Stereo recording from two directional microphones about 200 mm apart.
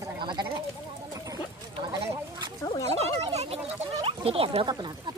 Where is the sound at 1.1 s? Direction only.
15° right (ahead or behind).